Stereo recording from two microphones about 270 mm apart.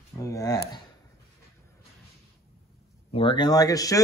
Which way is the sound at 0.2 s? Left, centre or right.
Centre.